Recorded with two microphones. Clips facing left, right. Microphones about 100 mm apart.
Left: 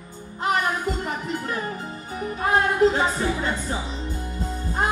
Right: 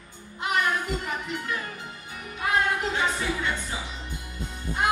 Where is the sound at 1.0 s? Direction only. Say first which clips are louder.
Left 4 dB; 35° left (ahead or behind).